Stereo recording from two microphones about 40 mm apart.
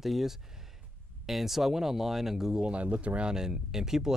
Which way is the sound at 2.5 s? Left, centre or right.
Right.